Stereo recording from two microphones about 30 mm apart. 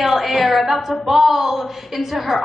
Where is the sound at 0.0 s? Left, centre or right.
Centre.